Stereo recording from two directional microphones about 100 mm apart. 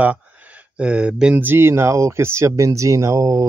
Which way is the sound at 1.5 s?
25° right (ahead or behind).